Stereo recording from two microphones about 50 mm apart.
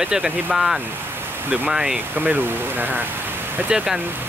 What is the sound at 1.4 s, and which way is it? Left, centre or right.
Speech, right.